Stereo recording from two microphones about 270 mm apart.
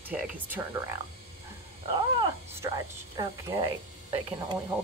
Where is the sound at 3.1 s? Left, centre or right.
Centre.